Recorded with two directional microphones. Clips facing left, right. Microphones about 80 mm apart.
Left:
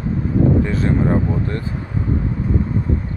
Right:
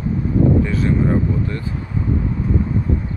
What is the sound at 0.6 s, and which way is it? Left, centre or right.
Speech, left.